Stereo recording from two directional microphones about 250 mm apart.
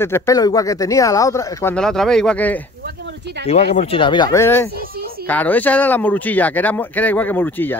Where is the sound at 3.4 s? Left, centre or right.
Left; by 7.8 s centre.